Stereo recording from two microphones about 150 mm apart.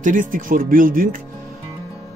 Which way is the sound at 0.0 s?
60° right (ahead or behind).